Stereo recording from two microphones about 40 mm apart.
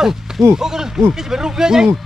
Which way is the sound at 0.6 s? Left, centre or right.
Centre.